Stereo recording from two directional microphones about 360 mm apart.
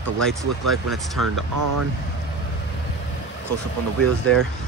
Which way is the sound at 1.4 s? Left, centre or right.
Right.